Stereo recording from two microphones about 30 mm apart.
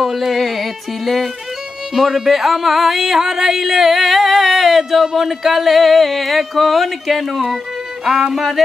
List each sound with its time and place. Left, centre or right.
0.0 s speech: centre
2.0 s speech: centre
8.0 s music: centre
8.6 s speech: centre